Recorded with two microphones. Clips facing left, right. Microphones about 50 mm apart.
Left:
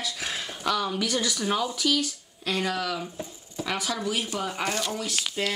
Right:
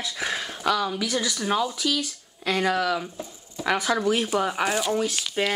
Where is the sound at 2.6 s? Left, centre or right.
Centre.